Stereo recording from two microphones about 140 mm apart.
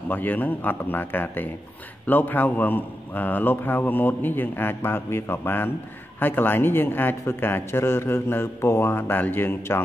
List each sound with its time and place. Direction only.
0.1 s speech: 10° left (ahead or behind)